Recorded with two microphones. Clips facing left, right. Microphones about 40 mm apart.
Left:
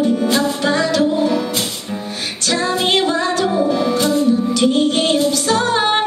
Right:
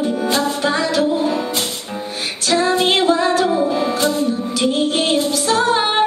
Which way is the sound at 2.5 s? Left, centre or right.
Centre.